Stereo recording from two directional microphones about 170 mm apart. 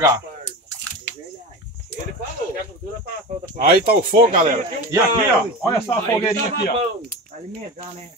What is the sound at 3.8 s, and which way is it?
Speech, 55° right (ahead or behind).